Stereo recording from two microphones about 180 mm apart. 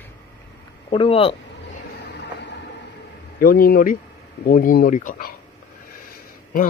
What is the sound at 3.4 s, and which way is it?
Speech, 55° left (ahead or behind).